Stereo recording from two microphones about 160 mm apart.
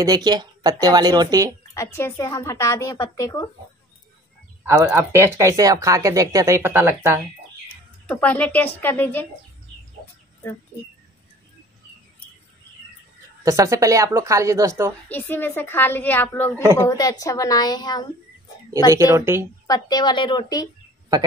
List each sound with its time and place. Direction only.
0.0 s speech: 25° right (ahead or behind)
1.7 s a woman's voice: 15° left (ahead or behind)
4.6 s speech: 15° right (ahead or behind)
8.1 s a woman's voice: 10° left (ahead or behind)
13.4 s speech: 20° right (ahead or behind)
15.0 s a woman's voice: 10° left (ahead or behind)
18.9 s speech: 20° right (ahead or behind)
19.7 s a woman's voice: 25° left (ahead or behind)